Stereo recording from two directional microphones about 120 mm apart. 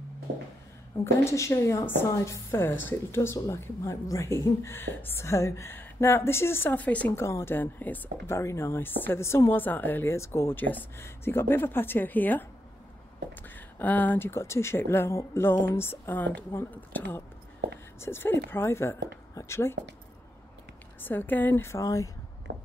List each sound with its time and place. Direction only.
1.2 s a woman's voice: 25° left (ahead or behind)
21.0 s a woman's voice: 15° left (ahead or behind)